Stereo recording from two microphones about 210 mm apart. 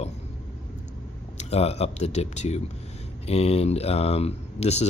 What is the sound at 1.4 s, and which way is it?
Speech, 30° left (ahead or behind).